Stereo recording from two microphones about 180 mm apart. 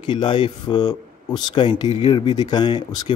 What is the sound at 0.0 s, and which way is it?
Speech, 25° left (ahead or behind).